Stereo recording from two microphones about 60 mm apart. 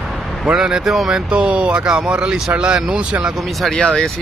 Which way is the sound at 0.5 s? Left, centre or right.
Centre.